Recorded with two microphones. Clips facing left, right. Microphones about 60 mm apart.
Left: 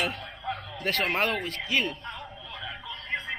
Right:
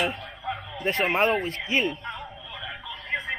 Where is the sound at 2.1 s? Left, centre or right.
Centre.